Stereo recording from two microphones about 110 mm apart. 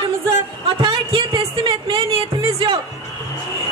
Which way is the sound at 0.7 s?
45° right (ahead or behind).